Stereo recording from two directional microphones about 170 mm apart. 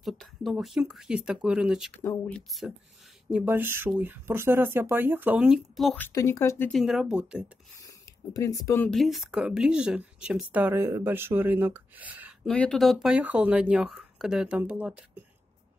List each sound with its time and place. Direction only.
0.0 s speech: centre (ahead or behind)
2.0 s speech: 15° left (ahead or behind)
3.3 s speech: 10° right (ahead or behind)
6.0 s speech: 20° left (ahead or behind)
6.7 s speech: centre (ahead or behind)
7.8 s speech: 20° left (ahead or behind)
8.9 s speech: centre (ahead or behind)
12.4 s speech: 5° left (ahead or behind)